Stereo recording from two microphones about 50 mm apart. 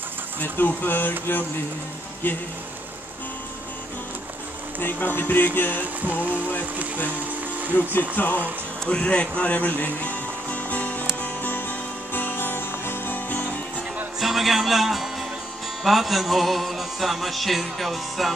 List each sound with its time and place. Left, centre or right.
0.4 s speech: left
2.2 s speech: left
4.7 s speech: left
7.7 s speech: left
8.8 s a man's voice: left
9.4 s music: left
14.2 s speech: centre
15.8 s music: centre